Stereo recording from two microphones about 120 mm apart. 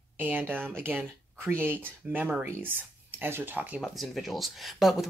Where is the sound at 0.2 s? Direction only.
15° right (ahead or behind).